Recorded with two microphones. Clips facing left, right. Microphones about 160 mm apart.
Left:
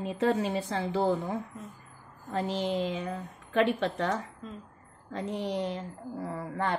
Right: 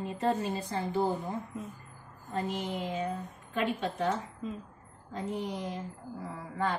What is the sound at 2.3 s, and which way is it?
Speech, 90° left.